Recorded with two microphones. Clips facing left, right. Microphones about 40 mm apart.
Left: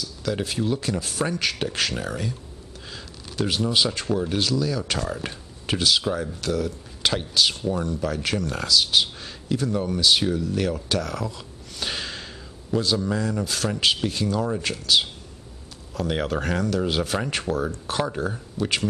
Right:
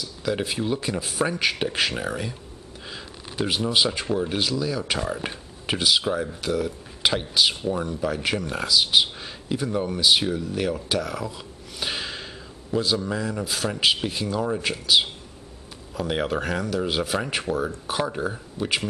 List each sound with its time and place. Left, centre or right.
0.0 s speech: centre